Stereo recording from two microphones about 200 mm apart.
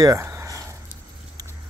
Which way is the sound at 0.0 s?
15° right (ahead or behind).